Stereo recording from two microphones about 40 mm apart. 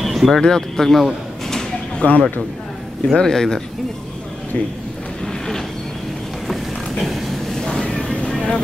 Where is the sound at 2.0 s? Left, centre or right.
Left.